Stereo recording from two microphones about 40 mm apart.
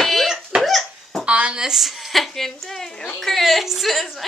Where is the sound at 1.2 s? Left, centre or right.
Right.